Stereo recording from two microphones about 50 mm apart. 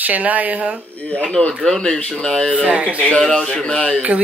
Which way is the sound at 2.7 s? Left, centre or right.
Right.